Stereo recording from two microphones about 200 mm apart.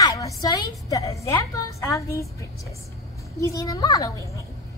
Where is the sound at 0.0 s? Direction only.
15° left (ahead or behind).